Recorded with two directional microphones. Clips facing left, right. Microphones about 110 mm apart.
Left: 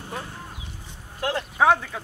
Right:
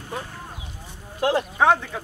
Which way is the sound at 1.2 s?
20° right (ahead or behind).